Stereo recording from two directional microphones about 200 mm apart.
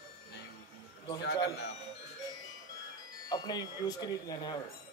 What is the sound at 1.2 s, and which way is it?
Speech, 60° left (ahead or behind).